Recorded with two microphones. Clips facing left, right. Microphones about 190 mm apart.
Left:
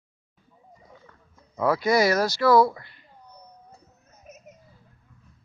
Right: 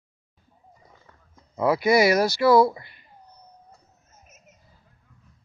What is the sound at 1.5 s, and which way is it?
Speech, 10° right (ahead or behind).